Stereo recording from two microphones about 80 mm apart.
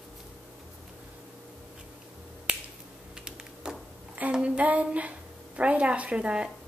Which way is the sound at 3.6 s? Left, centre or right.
Centre.